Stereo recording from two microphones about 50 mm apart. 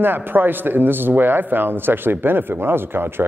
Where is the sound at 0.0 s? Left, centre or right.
Right.